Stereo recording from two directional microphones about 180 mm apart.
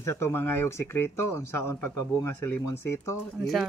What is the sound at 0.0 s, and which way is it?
Speech, 15° left (ahead or behind).